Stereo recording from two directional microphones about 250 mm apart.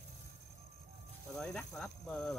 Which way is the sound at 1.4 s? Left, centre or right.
Centre.